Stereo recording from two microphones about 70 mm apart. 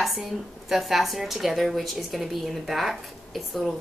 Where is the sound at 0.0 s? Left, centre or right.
Centre.